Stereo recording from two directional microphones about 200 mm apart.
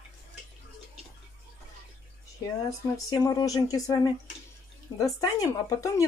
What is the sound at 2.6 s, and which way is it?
Speech, 15° left (ahead or behind).